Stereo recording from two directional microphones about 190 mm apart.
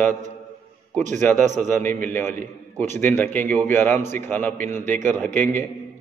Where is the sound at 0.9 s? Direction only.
40° right (ahead or behind).